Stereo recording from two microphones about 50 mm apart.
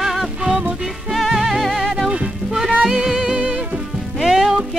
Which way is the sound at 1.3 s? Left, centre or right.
Centre.